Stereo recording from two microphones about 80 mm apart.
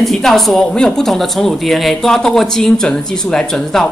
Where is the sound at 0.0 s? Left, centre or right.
Centre.